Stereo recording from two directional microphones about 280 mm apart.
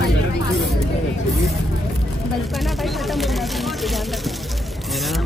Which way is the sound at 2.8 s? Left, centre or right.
Centre.